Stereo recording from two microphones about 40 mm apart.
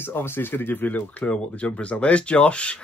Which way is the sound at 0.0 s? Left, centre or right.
Left.